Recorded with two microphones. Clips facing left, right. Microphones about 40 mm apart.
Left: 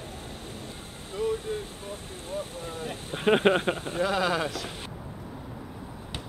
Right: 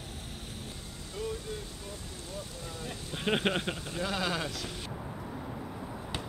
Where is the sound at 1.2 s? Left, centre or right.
Left.